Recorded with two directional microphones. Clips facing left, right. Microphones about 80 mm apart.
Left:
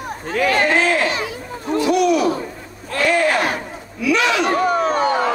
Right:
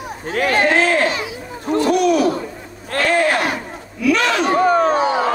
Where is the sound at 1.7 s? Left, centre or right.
Right.